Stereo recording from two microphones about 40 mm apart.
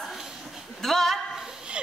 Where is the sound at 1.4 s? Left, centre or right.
Centre.